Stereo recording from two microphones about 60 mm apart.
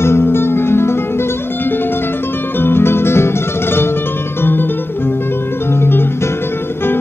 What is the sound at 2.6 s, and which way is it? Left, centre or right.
Music, left.